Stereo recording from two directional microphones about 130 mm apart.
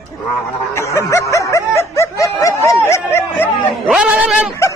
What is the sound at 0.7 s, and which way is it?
Snicker, 20° left (ahead or behind).